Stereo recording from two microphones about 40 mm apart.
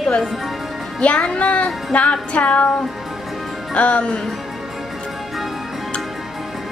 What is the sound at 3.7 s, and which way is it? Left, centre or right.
Music, left.